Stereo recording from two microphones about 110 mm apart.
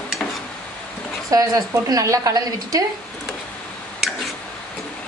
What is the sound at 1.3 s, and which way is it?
A woman's voice, 35° right (ahead or behind).